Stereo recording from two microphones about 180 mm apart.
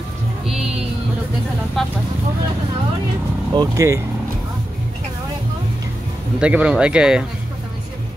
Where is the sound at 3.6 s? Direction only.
15° right (ahead or behind).